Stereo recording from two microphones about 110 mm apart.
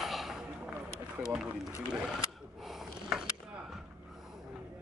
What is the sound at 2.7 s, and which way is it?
Snort, 5° right (ahead or behind).